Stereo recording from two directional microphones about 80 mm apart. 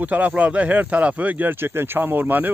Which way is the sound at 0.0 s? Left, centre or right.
Centre.